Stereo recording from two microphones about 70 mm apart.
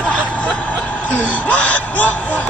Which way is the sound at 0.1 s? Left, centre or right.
Centre.